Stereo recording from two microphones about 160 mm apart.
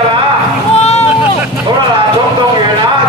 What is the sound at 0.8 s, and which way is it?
Vehicle, 40° left (ahead or behind).